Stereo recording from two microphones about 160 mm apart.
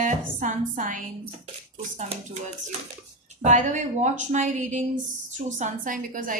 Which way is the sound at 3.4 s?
50° right (ahead or behind).